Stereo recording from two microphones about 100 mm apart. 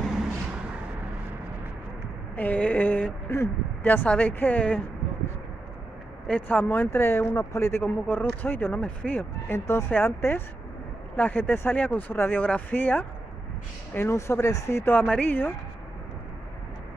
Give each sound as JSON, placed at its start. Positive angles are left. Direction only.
{"t": 2.3, "sound": "a sound", "side_deg": 15}
{"t": 3.3, "sound": "speech", "side_deg": 20}
{"t": 6.2, "sound": "speech", "side_deg": 15}
{"t": 15.0, "sound": "speech", "side_deg": 15}